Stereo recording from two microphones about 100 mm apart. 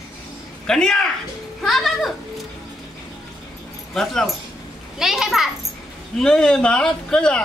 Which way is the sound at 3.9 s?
5° left (ahead or behind).